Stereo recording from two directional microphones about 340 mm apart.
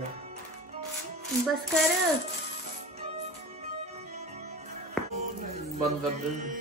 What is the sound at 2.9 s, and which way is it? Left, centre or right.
Music, centre.